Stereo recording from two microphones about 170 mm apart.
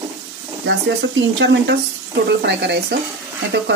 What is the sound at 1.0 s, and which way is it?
Speech, 90° right.